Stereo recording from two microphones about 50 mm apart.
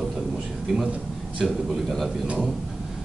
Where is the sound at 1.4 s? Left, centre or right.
Centre.